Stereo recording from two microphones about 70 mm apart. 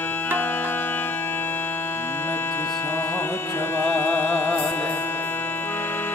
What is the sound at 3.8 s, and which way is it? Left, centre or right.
Music, left.